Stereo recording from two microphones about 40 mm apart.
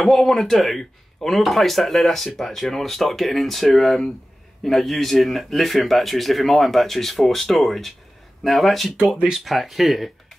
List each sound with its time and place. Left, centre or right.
0.0 s speech: centre
9.0 s speech: centre
9.4 s speech: centre